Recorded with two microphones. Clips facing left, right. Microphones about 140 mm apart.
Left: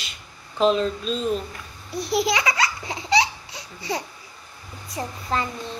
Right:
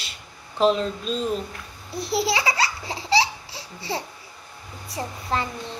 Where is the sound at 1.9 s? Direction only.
25° right (ahead or behind).